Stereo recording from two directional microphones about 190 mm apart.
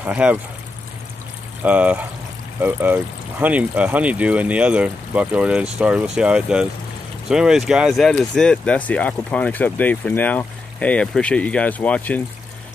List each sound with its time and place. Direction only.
0.0 s speech: 10° right (ahead or behind)
1.6 s speech: 10° right (ahead or behind); by 12.2 s 10° left (ahead or behind)